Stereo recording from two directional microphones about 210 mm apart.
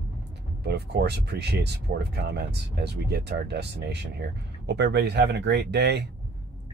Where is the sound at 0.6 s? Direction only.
50° right (ahead or behind).